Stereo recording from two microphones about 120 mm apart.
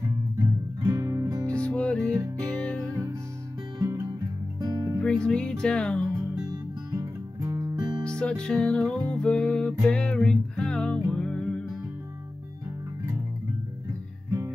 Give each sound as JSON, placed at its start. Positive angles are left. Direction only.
{"t": 0.0, "sound": "music", "side_deg": -25}
{"t": 1.5, "sound": "music", "side_deg": 10}
{"t": 4.6, "sound": "music", "side_deg": -30}
{"t": 5.0, "sound": "music", "side_deg": 10}
{"t": 6.9, "sound": "music", "side_deg": -30}
{"t": 7.7, "sound": "music", "side_deg": -35}
{"t": 8.0, "sound": "music", "side_deg": 10}